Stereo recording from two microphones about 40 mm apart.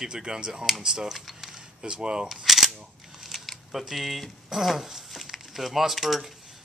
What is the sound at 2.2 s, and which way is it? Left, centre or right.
Cap gun, centre.